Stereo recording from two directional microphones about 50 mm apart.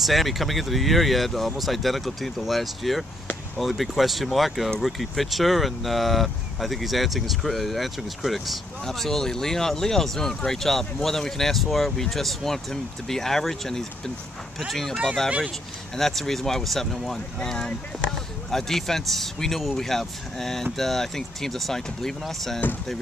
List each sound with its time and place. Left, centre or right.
0.0 s speech: centre
16.0 s speech: centre
17.4 s speech: centre